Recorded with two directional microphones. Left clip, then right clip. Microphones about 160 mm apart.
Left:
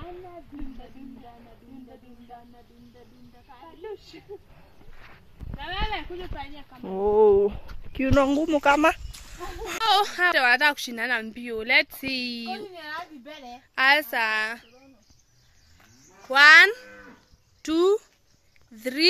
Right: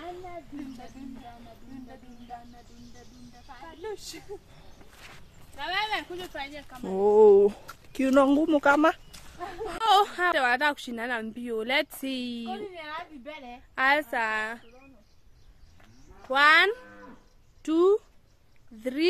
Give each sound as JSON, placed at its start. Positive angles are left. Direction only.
{"t": 3.6, "sound": "speech", "side_deg": -5}
{"t": 7.9, "sound": "speech", "side_deg": -15}
{"t": 9.8, "sound": "speech", "side_deg": -5}
{"t": 11.3, "sound": "speech", "side_deg": -15}
{"t": 16.3, "sound": "speech", "side_deg": 0}